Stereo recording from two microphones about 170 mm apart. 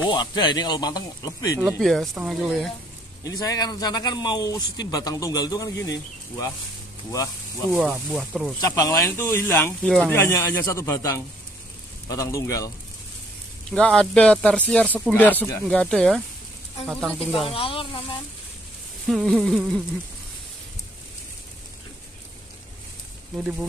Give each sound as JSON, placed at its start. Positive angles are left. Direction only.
{"t": 0.1, "sound": "a man's voice", "side_deg": 25}
{"t": 1.6, "sound": "speech", "side_deg": 0}
{"t": 3.3, "sound": "a man's voice", "side_deg": 20}
{"t": 7.7, "sound": "speech", "side_deg": 0}
{"t": 8.5, "sound": "speech", "side_deg": 20}
{"t": 9.8, "sound": "speech", "side_deg": 5}
{"t": 10.1, "sound": "a man's voice", "side_deg": 15}
{"t": 13.7, "sound": "speech", "side_deg": 5}
{"t": 17.6, "sound": "speech", "side_deg": 35}
{"t": 19.0, "sound": "speech", "side_deg": 0}
{"t": 23.3, "sound": "speech", "side_deg": -5}